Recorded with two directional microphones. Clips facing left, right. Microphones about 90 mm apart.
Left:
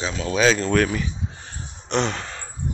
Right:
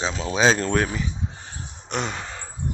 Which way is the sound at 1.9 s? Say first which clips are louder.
Left 5 dB; 10° right (ahead or behind).